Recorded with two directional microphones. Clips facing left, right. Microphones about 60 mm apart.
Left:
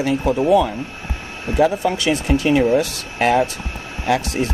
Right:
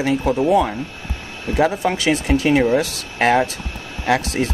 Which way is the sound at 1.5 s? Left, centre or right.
Right.